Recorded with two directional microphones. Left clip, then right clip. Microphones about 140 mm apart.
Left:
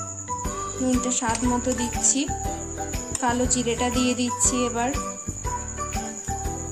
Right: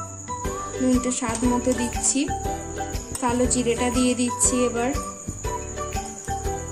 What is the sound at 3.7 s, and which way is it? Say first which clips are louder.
Music: right 1 dB; centre (ahead or behind).